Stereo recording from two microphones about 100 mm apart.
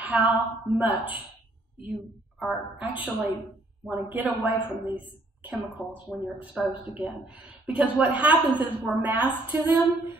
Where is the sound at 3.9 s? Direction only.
15° right (ahead or behind).